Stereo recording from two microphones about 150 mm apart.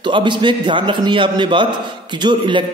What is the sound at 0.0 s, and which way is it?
A man's voice, 30° right (ahead or behind).